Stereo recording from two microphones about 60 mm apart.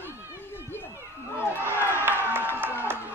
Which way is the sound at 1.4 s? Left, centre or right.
Left.